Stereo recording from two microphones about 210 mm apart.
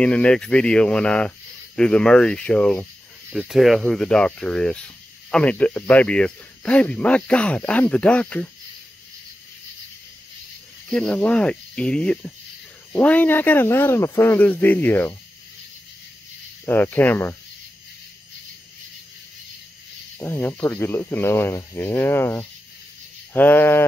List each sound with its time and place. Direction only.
0.0 s speech: 5° left (ahead or behind)
10.9 s speech: 5° left (ahead or behind)
16.6 s speech: 10° left (ahead or behind)
20.2 s speech: 10° left (ahead or behind)